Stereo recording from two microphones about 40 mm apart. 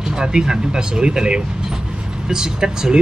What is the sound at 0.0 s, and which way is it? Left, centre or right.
Speech, centre.